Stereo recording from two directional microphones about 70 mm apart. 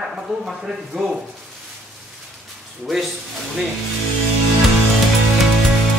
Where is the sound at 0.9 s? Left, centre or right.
Centre.